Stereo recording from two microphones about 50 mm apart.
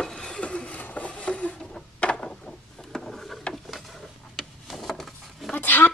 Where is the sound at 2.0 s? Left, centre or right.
Left.